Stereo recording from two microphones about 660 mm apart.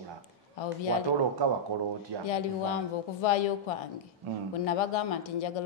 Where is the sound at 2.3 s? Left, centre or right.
Left.